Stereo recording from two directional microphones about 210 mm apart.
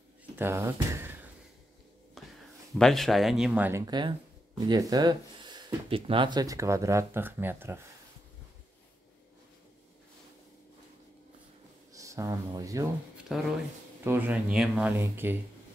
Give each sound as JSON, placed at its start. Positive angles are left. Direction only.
{"t": 0.4, "sound": "speech", "side_deg": -10}
{"t": 2.2, "sound": "a sound", "side_deg": 0}
{"t": 2.8, "sound": "speech", "side_deg": 0}
{"t": 11.9, "sound": "speech", "side_deg": -15}
{"t": 13.3, "sound": "speech", "side_deg": 0}